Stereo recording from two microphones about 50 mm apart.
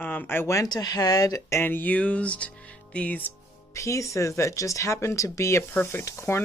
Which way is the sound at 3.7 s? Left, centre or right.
Left.